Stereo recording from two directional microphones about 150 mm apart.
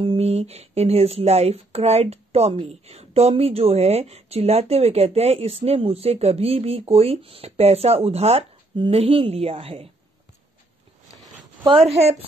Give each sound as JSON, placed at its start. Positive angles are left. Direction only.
{"t": 0.0, "sound": "speech", "side_deg": -40}
{"t": 11.6, "sound": "a woman's voice", "side_deg": -40}